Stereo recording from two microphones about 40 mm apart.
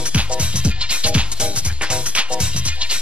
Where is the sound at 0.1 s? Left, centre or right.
Right.